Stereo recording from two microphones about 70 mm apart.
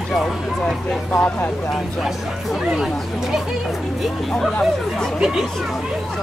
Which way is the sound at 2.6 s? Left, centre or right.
Centre.